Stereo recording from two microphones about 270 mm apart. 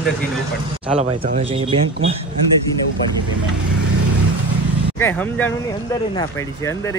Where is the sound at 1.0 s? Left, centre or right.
Centre.